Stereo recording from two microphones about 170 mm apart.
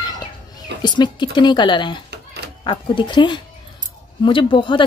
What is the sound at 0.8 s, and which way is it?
Speech, 25° left (ahead or behind).